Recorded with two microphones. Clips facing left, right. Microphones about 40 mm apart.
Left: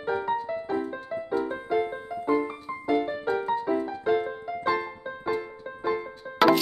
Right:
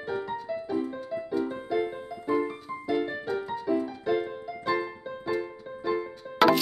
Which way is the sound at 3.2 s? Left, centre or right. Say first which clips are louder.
Left 3 dB; left.